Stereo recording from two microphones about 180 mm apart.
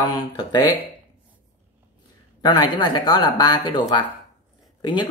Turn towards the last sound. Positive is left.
turn(degrees=25)  # may be behind; listen again after turning